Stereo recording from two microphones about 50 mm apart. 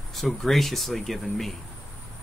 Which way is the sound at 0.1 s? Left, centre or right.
Centre.